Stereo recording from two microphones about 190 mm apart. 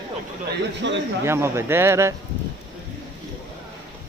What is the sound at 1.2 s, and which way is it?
Speech, 15° right (ahead or behind).